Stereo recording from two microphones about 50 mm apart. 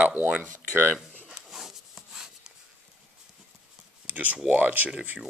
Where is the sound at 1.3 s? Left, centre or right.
Centre.